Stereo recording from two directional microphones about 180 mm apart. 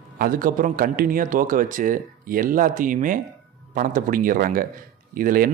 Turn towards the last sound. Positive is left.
turn(degrees=-50)  # may be behind; listen again after turning